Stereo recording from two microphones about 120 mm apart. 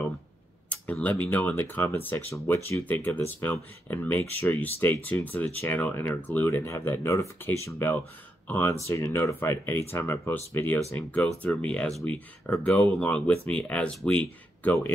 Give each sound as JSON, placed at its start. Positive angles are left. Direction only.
{"t": 0.7, "sound": "speech", "side_deg": 15}